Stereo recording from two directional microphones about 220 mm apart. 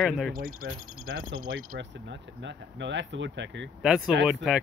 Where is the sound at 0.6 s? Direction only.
45° right (ahead or behind).